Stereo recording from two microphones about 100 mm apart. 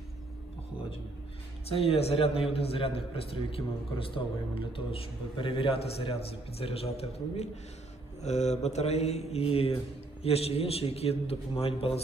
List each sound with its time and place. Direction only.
1.7 s a man's voice: 80° left
8.3 s mantra: 90° left
10.2 s a man's voice: 85° left